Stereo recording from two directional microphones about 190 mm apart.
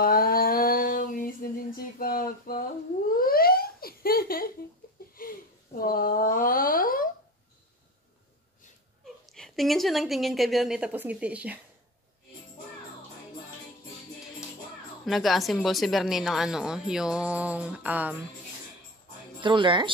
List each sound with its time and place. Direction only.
0.0 s a sound: 50° left (ahead or behind)
9.2 s a woman's voice: centre (ahead or behind)
15.0 s a woman's voice: centre (ahead or behind)
19.4 s speech: 25° right (ahead or behind)